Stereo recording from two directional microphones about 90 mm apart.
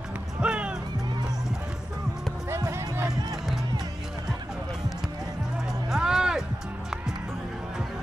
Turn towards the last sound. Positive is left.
turn(degrees=-5)  # may be behind; listen again after turning